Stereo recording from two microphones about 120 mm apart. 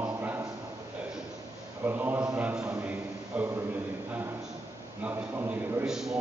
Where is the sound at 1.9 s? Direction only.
15° right (ahead or behind).